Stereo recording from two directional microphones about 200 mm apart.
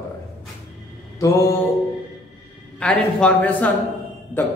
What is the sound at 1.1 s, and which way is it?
Mantra, 15° left (ahead or behind).